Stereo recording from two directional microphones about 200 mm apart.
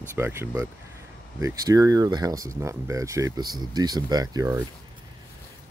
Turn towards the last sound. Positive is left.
turn(degrees=-20)  # may be behind; listen again after turning